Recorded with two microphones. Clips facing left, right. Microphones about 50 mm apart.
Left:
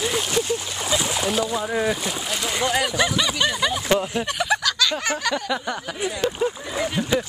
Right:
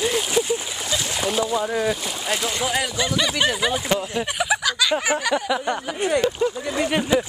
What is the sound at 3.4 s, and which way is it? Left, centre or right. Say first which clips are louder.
Speech: right 1 dB; centre.